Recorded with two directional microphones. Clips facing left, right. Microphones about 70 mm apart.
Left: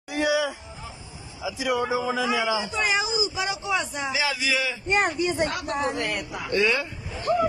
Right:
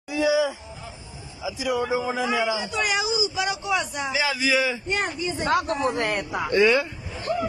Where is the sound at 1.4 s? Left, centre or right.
Left.